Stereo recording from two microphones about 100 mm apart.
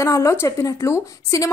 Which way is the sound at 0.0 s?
30° left (ahead or behind).